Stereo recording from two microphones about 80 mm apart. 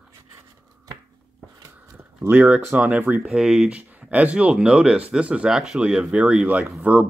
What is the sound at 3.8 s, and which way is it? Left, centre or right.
Speech, centre.